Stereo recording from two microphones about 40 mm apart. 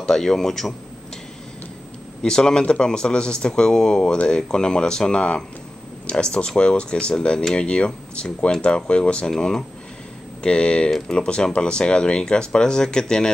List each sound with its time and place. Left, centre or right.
0.0 s speech: centre
2.2 s speech: centre
9.4 s speech: centre
10.9 s speech: centre
11.2 s speech: left